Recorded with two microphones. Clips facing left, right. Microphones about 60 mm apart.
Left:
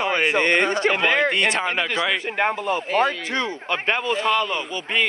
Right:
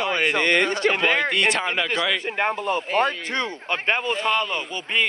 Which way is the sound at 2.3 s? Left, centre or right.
Left.